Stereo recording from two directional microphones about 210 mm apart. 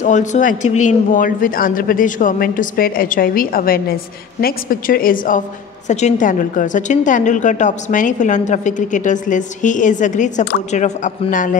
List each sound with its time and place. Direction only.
0.0 s a woman's voice: 35° left (ahead or behind)